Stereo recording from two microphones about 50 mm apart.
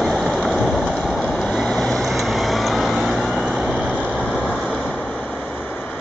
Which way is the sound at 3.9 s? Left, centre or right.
Left.